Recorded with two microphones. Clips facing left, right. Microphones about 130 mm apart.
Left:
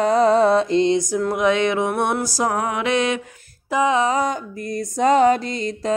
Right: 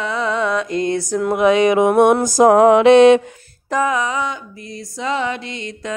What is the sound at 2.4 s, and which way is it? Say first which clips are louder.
Music: right 14 dB; 75° right (ahead or behind).